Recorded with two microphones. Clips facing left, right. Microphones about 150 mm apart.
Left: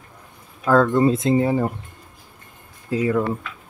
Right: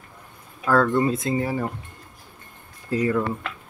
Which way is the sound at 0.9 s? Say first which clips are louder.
Left 5 dB; 25° left (ahead or behind).